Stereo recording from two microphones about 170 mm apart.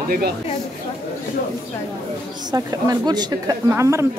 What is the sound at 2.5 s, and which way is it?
A woman's voice, 20° right (ahead or behind).